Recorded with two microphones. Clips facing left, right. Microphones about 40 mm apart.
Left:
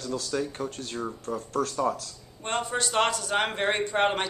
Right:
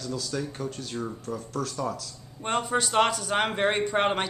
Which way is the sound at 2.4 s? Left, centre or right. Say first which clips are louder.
Right 2 dB; centre.